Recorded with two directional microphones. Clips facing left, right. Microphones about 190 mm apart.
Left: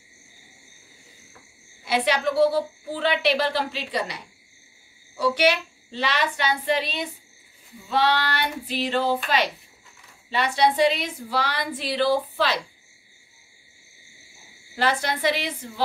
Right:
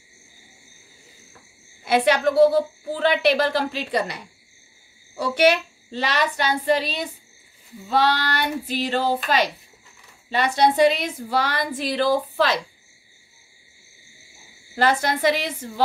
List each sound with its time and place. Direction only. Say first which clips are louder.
1.9 s a woman's voice: right 4 dB; 50° right (ahead or behind)
14.8 s a woman's voice: right 4 dB; 45° right (ahead or behind)